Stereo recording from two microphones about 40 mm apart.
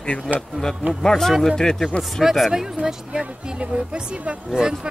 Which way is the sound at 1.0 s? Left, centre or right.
Centre.